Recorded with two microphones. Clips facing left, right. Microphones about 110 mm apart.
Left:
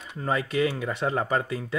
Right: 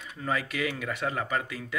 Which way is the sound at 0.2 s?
30° left (ahead or behind).